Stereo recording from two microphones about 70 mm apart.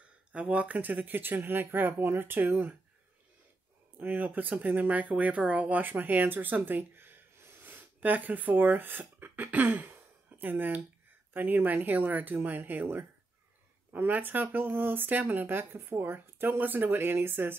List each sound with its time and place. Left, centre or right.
0.3 s speech: centre
4.0 s speech: right